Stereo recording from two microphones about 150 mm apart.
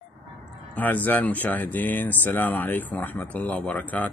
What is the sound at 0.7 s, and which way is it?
Speech, 10° left (ahead or behind).